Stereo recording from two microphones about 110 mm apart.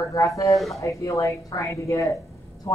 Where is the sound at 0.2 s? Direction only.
30° left (ahead or behind).